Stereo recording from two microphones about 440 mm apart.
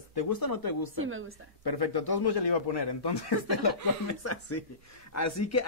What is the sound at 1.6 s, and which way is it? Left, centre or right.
A man's voice, left.